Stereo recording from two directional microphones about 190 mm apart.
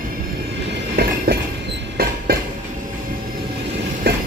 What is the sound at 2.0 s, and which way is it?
Train, 55° right (ahead or behind).